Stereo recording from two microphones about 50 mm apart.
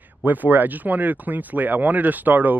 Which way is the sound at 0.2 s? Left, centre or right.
Right.